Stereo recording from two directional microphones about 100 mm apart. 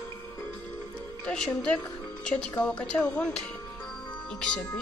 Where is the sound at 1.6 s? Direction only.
10° left (ahead or behind).